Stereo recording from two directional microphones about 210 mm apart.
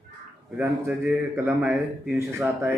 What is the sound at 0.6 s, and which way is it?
A man's voice, 10° right (ahead or behind).